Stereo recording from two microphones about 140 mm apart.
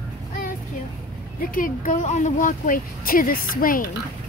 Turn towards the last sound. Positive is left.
turn(degrees=90)